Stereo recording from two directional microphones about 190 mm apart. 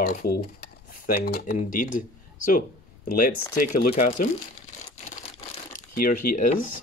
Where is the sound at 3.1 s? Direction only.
50° left (ahead or behind).